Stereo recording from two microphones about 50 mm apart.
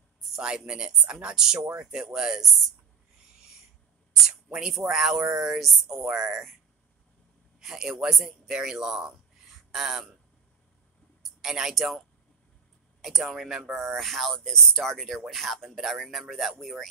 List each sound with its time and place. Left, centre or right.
0.4 s speech: centre
4.3 s speech: centre
7.6 s speech: centre
11.4 s speech: centre
13.0 s speech: centre